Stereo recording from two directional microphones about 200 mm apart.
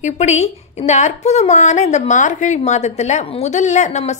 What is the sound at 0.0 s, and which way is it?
A woman's voice, 35° left (ahead or behind).